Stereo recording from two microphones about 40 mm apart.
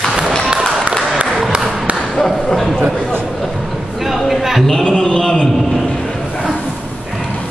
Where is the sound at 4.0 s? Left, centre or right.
Centre.